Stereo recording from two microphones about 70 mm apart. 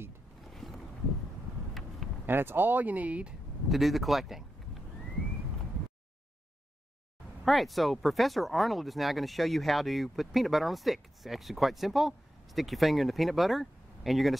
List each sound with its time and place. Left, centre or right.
0.4 s boat: centre
1.7 s a sound: centre
2.2 s speech: right
3.6 s speech: centre
7.4 s speech: centre